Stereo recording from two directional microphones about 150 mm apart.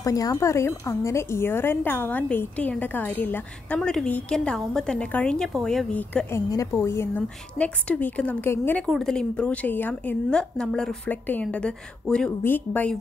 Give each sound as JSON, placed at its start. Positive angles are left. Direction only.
{"t": 0.0, "sound": "a woman's voice", "side_deg": 20}
{"t": 6.3, "sound": "a woman's voice", "side_deg": 25}